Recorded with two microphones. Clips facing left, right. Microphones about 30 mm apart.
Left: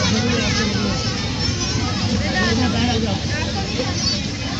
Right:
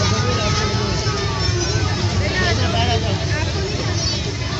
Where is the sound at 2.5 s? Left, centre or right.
Centre.